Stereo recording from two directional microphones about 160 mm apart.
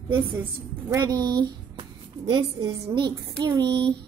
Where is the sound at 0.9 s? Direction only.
25° right (ahead or behind).